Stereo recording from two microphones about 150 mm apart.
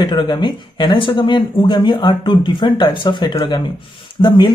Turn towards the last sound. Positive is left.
turn(degrees=30)  # may be behind; listen again after turning